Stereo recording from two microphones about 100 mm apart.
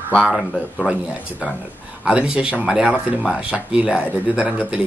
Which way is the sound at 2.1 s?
10° right (ahead or behind).